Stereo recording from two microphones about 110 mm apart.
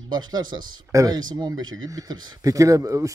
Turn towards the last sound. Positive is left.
turn(degrees=-30)  # may be behind; listen again after turning